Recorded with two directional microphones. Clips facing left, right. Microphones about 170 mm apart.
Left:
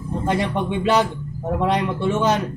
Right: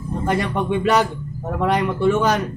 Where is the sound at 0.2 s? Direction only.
20° left (ahead or behind).